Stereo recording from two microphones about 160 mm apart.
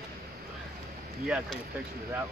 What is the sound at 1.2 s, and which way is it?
Speech, 5° right (ahead or behind).